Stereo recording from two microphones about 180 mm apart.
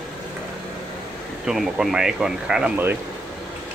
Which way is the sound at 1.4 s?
5° right (ahead or behind).